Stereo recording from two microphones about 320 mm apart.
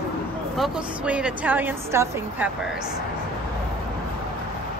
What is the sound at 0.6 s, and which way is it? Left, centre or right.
A woman's voice, centre.